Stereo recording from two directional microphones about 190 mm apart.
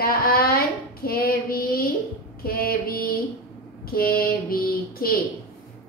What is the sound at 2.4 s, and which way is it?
Female singing, 50° left (ahead or behind).